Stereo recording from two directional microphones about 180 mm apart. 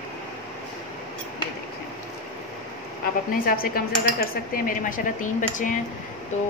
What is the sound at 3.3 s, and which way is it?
A woman's voice, 55° left (ahead or behind).